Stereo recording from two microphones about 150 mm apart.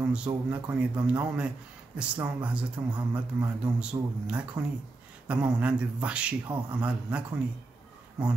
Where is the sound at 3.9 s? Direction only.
25° right (ahead or behind).